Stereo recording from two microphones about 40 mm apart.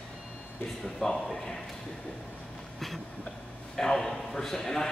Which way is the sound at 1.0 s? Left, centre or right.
Centre.